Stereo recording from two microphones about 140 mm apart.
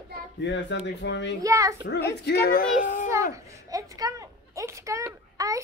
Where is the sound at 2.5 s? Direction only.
65° left (ahead or behind).